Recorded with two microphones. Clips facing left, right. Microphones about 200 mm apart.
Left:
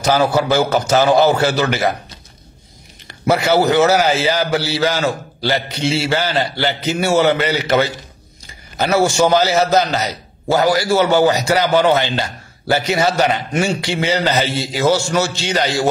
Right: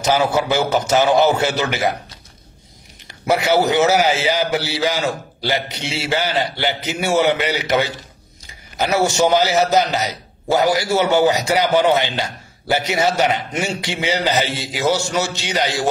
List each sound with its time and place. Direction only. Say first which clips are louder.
0.7 s a man's voice: left 2 dB; 20° right (ahead or behind)
3.1 s a man's voice: left 2 dB; 15° right (ahead or behind)